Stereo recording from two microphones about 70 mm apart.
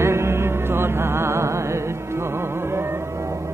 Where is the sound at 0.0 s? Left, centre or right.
Right.